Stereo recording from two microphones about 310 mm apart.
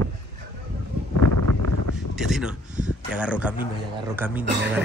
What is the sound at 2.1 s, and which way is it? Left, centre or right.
Speech, centre.